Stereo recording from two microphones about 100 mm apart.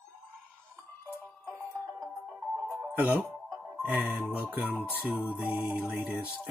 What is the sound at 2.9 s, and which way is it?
Speech, 15° right (ahead or behind).